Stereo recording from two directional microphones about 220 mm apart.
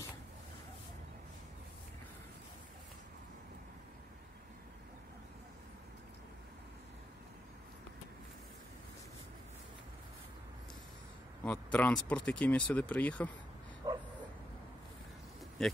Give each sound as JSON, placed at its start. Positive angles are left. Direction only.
{"t": 11.4, "sound": "speech", "side_deg": 5}
{"t": 13.8, "sound": "bow-wow", "side_deg": -20}
{"t": 15.6, "sound": "speech", "side_deg": 0}